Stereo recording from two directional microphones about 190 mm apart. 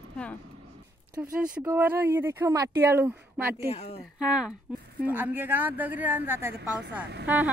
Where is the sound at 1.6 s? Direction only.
10° right (ahead or behind).